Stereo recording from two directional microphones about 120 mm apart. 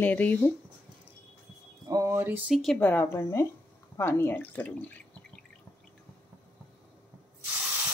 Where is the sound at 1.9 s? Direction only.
25° right (ahead or behind).